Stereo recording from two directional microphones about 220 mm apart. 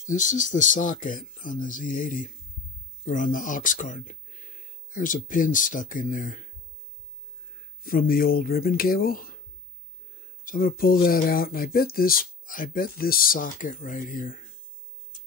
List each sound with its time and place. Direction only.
0.1 s speech: 35° left (ahead or behind)
7.8 s speech: 40° left (ahead or behind)
10.4 s speech: 40° left (ahead or behind)